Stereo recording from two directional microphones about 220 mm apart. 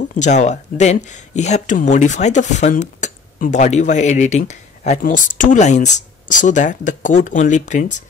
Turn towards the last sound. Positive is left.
turn(degrees=35)  # may be behind; listen again after turning